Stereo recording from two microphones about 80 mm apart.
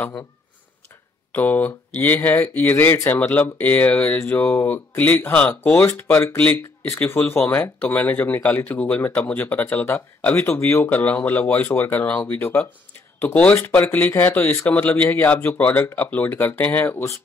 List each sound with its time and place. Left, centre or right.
1.3 s speech: left